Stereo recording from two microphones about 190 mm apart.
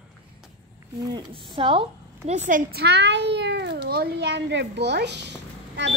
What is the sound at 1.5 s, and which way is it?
Speech, 30° right (ahead or behind).